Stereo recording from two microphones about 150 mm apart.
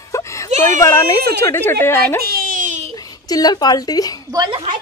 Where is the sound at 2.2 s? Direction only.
70° right (ahead or behind).